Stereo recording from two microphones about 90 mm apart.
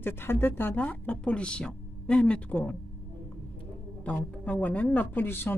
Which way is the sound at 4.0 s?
15° left (ahead or behind).